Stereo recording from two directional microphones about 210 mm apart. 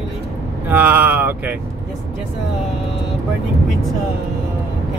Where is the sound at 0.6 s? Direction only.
10° right (ahead or behind).